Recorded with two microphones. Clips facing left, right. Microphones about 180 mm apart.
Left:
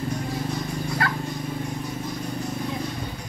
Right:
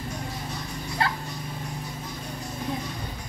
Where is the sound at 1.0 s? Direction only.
25° right (ahead or behind).